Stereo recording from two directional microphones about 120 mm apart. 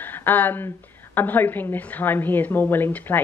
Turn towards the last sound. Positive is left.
turn(degrees=15)  # may be behind; listen again after turning